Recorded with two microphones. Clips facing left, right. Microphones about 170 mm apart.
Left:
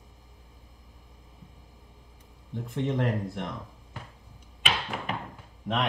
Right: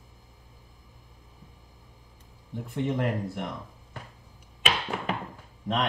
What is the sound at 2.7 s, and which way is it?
Speech, 5° right (ahead or behind).